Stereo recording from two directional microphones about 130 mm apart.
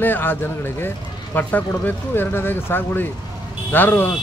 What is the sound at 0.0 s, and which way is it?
A man's voice, 15° left (ahead or behind).